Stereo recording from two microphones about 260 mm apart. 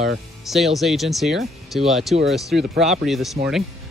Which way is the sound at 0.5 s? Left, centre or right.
Centre.